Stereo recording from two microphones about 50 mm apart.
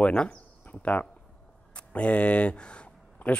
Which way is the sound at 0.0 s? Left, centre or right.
Left.